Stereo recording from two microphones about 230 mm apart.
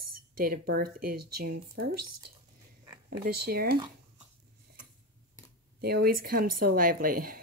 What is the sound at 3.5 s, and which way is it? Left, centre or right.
Speech, right.